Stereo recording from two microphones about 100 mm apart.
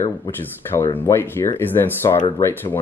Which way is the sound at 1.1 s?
25° left (ahead or behind).